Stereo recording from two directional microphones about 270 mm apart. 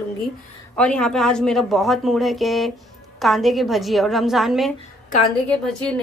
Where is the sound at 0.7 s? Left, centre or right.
Centre.